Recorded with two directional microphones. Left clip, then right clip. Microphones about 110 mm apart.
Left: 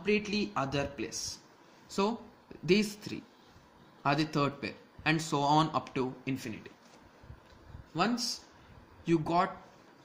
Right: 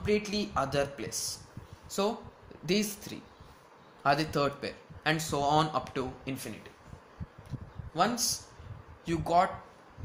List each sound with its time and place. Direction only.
0.0 s speech: 20° left (ahead or behind); by 3.2 s 40° left (ahead or behind)
4.0 s speech: 30° left (ahead or behind)
7.9 s speech: 35° left (ahead or behind)